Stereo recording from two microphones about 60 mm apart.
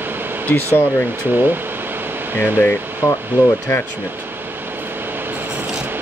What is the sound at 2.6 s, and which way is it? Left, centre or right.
Speech, left.